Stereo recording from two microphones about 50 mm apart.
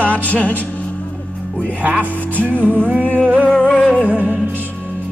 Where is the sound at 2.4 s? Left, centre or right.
Right.